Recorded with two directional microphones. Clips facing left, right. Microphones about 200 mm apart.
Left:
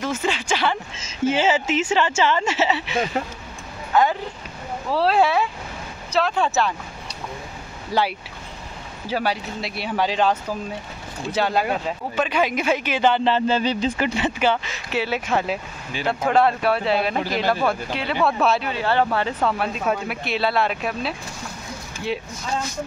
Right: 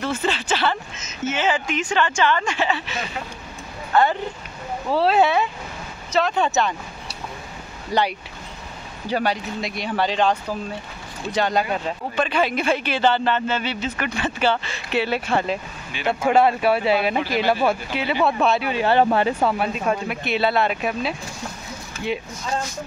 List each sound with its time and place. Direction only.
0.0 s speech: 10° left (ahead or behind)
0.9 s speech: 30° left (ahead or behind)
3.9 s speech: 10° left (ahead or behind)
11.3 s speech: 5° left (ahead or behind)
13.2 s speech: 30° left (ahead or behind); by 15.6 s 5° left (ahead or behind)
16.1 s speech: 5° right (ahead or behind)
18.7 s speech: 15° right (ahead or behind)
19.6 s speech: centre (ahead or behind)